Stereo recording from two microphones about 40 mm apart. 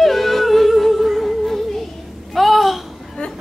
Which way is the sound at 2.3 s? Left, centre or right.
Centre.